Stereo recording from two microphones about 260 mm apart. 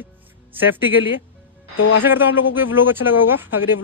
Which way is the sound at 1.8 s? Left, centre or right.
Left.